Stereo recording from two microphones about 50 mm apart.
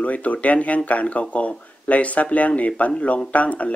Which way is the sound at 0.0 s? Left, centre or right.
Left.